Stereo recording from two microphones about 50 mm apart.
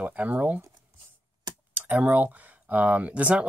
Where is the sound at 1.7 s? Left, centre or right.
Right.